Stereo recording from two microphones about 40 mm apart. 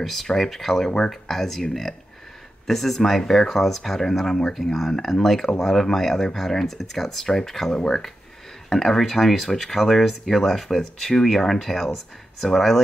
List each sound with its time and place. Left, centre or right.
0.0 s speech: centre